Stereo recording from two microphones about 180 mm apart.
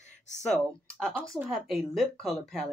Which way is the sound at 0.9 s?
5° left (ahead or behind).